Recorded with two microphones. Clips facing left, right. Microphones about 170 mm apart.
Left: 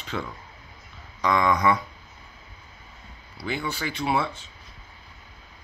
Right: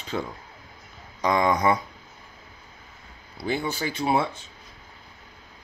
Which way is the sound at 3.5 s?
45° right (ahead or behind).